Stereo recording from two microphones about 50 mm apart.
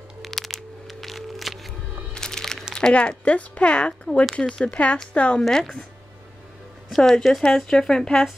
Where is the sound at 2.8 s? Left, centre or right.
Left.